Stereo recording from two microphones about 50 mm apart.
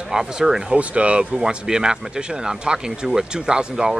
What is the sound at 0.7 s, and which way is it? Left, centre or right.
A man's voice, right.